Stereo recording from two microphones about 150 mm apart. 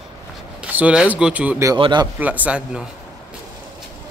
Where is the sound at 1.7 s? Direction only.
30° right (ahead or behind).